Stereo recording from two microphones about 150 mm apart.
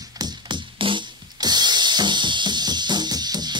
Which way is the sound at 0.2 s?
35° right (ahead or behind).